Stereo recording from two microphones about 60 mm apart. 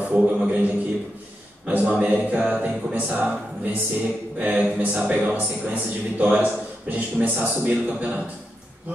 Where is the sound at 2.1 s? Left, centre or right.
Right.